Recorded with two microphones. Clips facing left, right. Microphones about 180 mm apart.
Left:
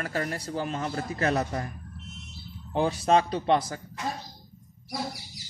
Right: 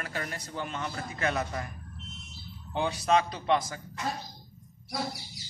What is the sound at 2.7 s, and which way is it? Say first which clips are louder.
A man's voice: left 3 dB; 35° left (ahead or behind).